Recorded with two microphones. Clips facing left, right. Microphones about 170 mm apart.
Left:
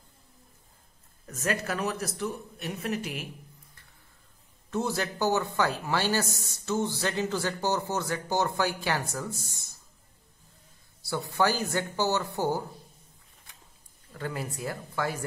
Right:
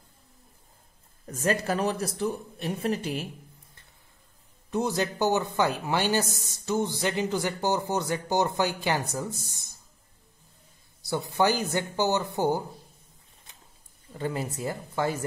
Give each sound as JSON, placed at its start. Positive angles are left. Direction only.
{"t": 1.2, "sound": "speech", "side_deg": -30}
{"t": 4.6, "sound": "speech", "side_deg": -15}
{"t": 11.1, "sound": "speech", "side_deg": -20}
{"t": 14.1, "sound": "speech", "side_deg": -20}